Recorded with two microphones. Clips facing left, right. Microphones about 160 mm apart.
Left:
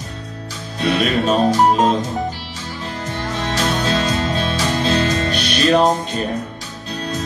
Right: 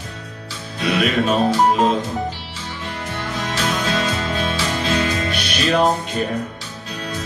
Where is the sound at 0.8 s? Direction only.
40° left (ahead or behind).